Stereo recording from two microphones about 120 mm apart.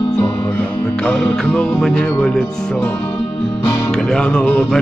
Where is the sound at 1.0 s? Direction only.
5° left (ahead or behind).